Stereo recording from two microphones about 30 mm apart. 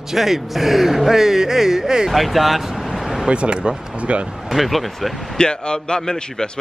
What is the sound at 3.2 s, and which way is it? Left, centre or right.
Speech, right.